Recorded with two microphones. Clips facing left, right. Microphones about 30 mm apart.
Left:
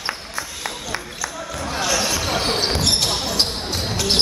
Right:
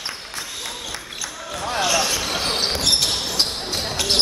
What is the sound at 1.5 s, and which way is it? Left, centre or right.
Basketball bounce, centre.